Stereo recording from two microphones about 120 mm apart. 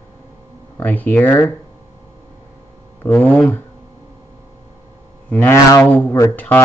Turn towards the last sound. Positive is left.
turn(degrees=15)  # may be behind; listen again after turning